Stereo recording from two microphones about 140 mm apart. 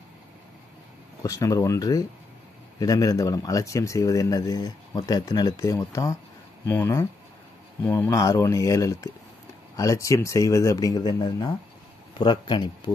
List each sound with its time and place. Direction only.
1.2 s speech: 25° left (ahead or behind)